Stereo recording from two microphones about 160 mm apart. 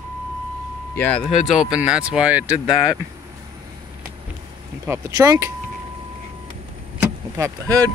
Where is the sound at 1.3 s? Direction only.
5° right (ahead or behind).